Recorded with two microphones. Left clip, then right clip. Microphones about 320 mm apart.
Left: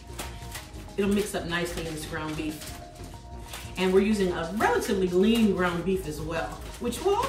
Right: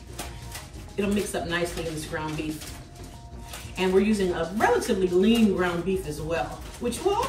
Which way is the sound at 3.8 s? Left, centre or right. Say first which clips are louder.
Right 1 dB; centre.